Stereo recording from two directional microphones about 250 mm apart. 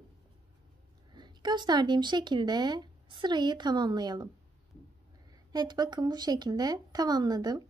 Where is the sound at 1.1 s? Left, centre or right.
Centre.